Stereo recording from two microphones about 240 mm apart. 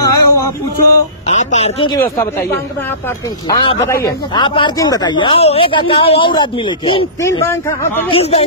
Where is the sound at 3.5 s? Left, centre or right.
Centre.